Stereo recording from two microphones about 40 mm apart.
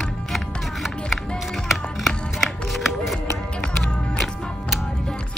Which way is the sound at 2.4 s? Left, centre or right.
Centre.